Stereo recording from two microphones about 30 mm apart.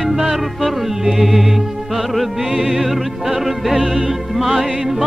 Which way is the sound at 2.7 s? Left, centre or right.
Centre.